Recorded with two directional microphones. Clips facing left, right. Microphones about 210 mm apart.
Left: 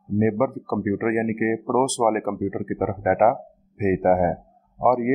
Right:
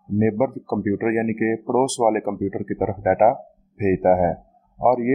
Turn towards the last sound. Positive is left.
turn(degrees=-20)  # may be behind; listen again after turning